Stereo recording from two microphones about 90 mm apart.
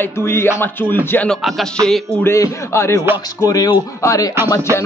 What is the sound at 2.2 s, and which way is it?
Speech, 35° left (ahead or behind).